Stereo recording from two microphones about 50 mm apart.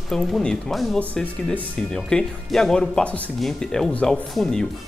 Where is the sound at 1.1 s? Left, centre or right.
Left.